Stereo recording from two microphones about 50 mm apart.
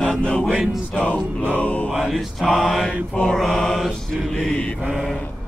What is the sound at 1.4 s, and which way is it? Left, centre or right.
Mantra, left.